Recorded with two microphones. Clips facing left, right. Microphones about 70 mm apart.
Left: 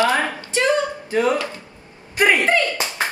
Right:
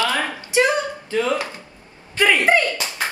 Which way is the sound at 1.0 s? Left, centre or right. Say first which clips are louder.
Left 2 dB; left.